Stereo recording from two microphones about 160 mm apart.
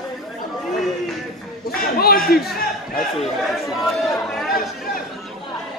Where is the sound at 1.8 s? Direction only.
70° left (ahead or behind).